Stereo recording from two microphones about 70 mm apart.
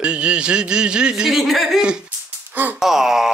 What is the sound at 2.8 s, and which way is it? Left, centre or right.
Speech, centre.